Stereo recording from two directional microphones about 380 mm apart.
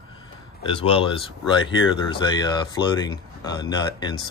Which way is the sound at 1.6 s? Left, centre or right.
Left.